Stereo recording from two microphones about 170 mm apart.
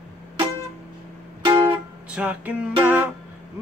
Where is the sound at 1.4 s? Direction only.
30° right (ahead or behind).